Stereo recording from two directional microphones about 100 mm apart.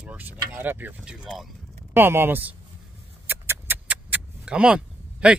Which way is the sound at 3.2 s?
20° right (ahead or behind).